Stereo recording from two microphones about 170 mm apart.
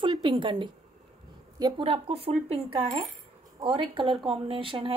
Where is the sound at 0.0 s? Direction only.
25° right (ahead or behind).